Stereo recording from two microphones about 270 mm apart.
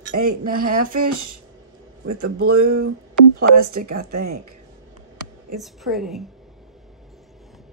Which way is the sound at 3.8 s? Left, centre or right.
Right.